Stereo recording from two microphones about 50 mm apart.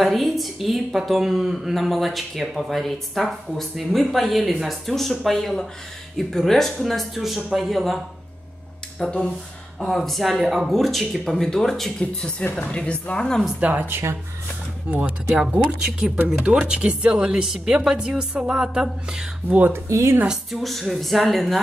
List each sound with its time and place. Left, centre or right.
0.0 s a woman's voice: centre
9.0 s a woman's voice: centre
9.8 s a woman's voice: centre
12.0 s a woman's voice: centre
13.6 s speech: right
13.8 s speech: right
14.9 s speech: right
15.3 s speech: centre
19.7 s speech: right
20.5 s a woman's voice: centre